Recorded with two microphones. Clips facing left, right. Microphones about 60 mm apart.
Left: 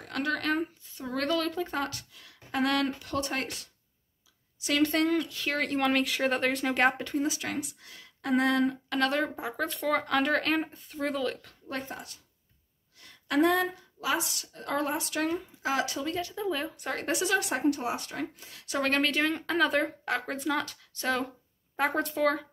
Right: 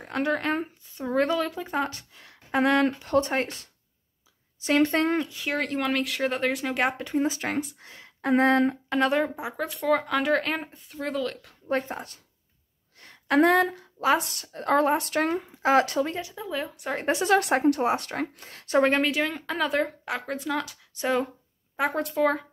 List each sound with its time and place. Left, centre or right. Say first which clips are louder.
0.0 s speech: right 4 dB; right
1.8 s speech: right 4 dB; right
5.3 s speech: right 2 dB; centre
5.6 s speech: left 1 dB; centre
7.2 s speech: right 4 dB; right
9.2 s speech: right 2 dB; centre
11.6 s speech: right 9 dB; right
13.0 s a sound: right 6 dB; right
13.4 s a woman's voice: right 4 dB; right
16.3 s speech: even; centre
16.9 s a woman's voice: right 6 dB; right
18.8 s speech: right 5 dB; centre
20.9 s speech: right 4 dB; centre
21.7 s speech: right 2 dB; centre